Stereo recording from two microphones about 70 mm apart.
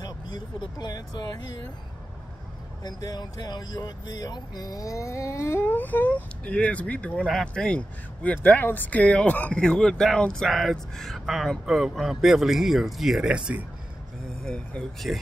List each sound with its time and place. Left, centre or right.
0.0 s speech: left
2.8 s speech: left
5.8 s speech: left; by 13.3 s centre
13.3 s speech: centre
15.0 s speech: centre